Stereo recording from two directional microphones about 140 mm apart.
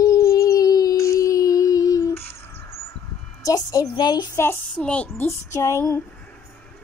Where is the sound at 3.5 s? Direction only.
30° left (ahead or behind).